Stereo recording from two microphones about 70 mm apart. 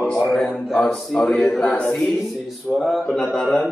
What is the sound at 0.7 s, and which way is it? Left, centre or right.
Speech, centre.